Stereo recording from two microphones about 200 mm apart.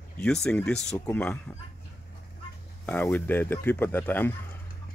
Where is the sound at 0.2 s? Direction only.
5° left (ahead or behind).